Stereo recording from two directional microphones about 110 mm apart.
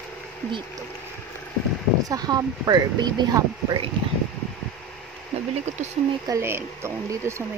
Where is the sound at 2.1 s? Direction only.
35° right (ahead or behind).